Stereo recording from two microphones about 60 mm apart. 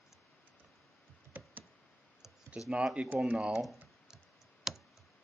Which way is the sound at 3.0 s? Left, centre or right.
Right.